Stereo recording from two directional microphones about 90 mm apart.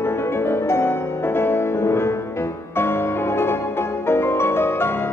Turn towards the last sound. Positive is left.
turn(degrees=25)  # may be behind; listen again after turning